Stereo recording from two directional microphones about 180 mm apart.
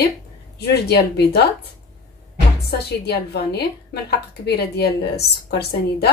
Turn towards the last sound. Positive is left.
turn(degrees=65)  # may be behind; listen again after turning